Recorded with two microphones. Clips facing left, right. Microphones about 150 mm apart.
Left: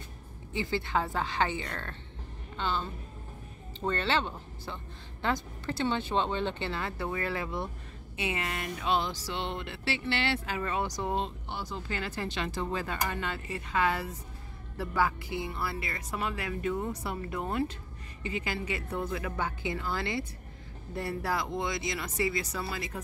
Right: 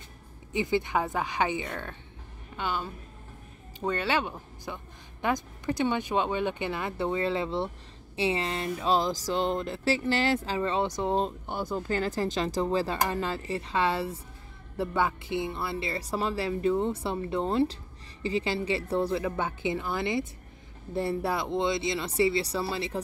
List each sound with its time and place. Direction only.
0.5 s a woman's voice: 20° right (ahead or behind)
11.1 s speech: 45° right (ahead or behind); by 22.9 s 30° right (ahead or behind)